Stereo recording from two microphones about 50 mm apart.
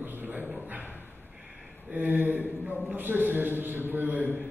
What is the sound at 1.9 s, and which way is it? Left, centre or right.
A man's voice, right.